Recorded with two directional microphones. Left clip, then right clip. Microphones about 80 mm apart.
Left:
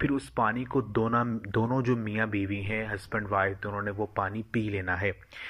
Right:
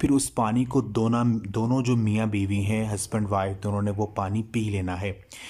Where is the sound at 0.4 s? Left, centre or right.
Right.